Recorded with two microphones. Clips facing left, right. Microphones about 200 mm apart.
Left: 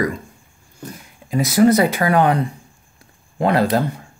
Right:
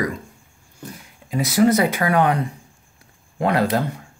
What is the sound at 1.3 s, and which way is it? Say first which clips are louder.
Speech: left 3 dB; 45° left (ahead or behind).